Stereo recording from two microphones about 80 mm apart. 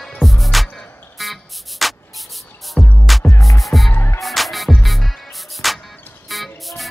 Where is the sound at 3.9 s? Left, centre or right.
Left.